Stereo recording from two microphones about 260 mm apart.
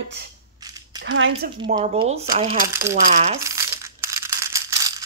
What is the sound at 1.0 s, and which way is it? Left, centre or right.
Speech, right.